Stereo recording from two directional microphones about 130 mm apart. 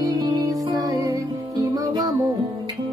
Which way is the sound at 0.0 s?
30° right (ahead or behind).